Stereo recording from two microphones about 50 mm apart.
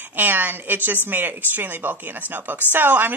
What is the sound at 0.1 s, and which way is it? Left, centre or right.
A woman's voice, right.